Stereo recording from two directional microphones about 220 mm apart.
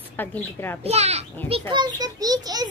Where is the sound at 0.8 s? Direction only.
30° right (ahead or behind).